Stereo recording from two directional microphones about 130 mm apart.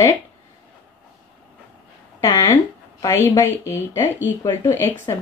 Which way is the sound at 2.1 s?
20° left (ahead or behind).